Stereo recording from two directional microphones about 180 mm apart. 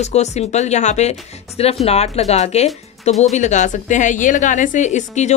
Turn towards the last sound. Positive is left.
turn(degrees=40)  # may be behind; listen again after turning